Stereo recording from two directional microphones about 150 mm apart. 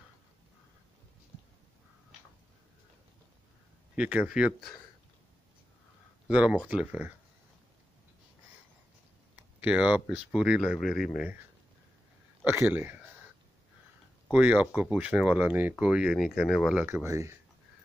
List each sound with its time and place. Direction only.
3.9 s speech: 10° right (ahead or behind)
6.2 s speech: 10° right (ahead or behind)
9.6 s speech: 10° right (ahead or behind)
12.4 s speech: 15° right (ahead or behind)
14.3 s speech: 10° right (ahead or behind)
16.8 s speech: 20° right (ahead or behind)